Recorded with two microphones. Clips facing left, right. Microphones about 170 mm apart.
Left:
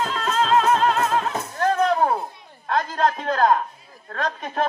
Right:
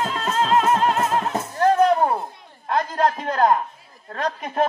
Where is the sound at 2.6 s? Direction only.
20° right (ahead or behind).